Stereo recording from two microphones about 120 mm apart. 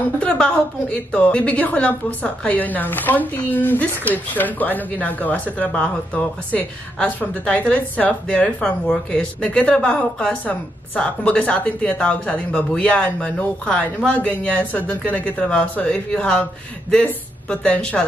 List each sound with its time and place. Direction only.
0.2 s a woman's voice: 10° left (ahead or behind)